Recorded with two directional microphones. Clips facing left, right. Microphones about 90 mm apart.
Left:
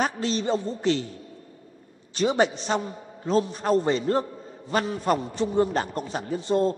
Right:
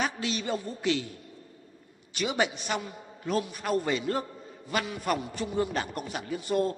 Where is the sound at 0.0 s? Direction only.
35° left (ahead or behind).